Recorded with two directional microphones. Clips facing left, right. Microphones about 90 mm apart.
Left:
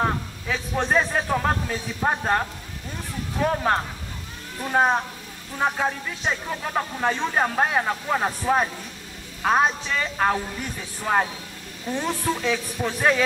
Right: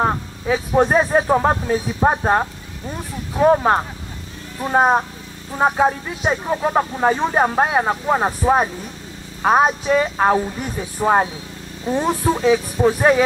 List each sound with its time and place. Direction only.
0.7 s speech: 30° right (ahead or behind)